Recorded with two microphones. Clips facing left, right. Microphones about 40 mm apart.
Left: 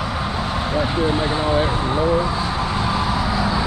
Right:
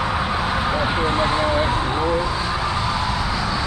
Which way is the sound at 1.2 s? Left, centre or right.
Centre.